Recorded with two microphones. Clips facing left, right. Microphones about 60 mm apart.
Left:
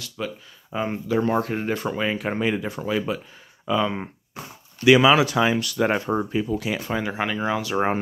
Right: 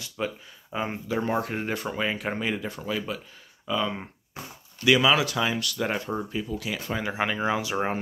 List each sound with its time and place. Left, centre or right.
0.2 s speech: centre; by 6.7 s left
7.0 s speech: centre